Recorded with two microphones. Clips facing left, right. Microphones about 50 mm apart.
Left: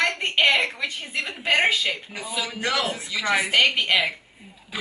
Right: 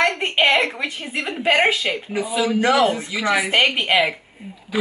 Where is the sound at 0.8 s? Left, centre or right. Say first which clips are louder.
Right 3 dB; centre.